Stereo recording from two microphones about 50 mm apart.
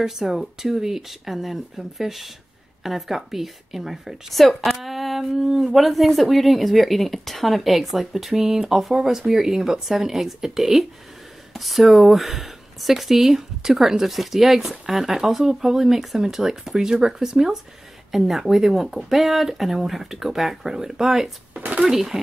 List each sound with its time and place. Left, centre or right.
0.0 s a woman's voice: centre
21.5 s a sound: right
21.8 s speech: centre